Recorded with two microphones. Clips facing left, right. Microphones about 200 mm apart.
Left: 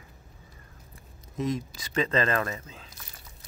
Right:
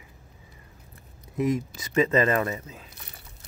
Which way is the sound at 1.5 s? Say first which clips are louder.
Right 5 dB; 15° right (ahead or behind).